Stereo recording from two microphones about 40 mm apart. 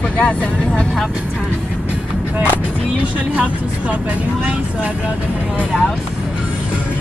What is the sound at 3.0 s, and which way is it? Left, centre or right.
Speech, right.